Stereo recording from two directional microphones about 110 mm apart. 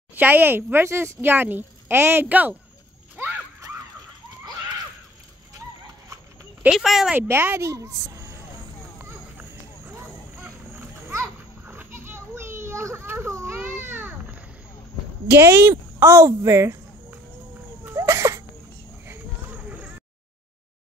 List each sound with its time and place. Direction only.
0.1 s a woman's voice: 15° right (ahead or behind)
6.7 s speech: centre (ahead or behind)
7.2 s a woman's voice: 20° right (ahead or behind)
8.9 s a sound: 20° right (ahead or behind)
11.1 s children playing: 20° right (ahead or behind)
15.3 s a woman's voice: 20° right (ahead or behind)
17.8 s a sound: 25° right (ahead or behind)